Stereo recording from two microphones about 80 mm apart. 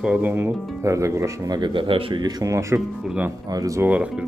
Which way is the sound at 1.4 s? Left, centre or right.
Right.